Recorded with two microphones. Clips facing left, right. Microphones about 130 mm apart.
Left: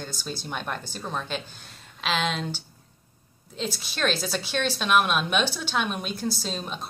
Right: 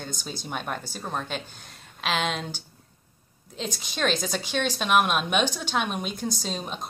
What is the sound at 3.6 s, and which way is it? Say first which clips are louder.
A woman's voice: even; 15° right (ahead or behind).